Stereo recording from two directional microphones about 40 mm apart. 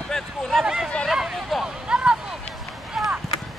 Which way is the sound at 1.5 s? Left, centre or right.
Centre.